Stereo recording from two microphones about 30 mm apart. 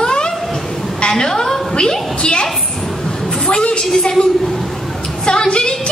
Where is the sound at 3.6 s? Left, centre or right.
Left.